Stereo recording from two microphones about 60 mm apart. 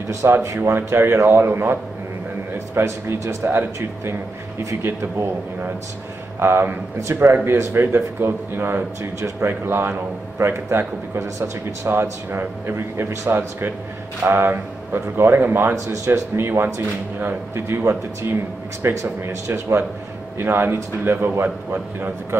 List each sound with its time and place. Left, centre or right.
0.2 s speech: right
0.6 s a man's voice: right
3.4 s a man's voice: right